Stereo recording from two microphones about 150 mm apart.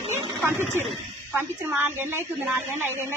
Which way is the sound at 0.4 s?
15° right (ahead or behind).